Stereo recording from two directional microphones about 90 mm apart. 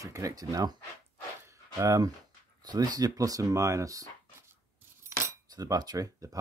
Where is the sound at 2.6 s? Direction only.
50° right (ahead or behind).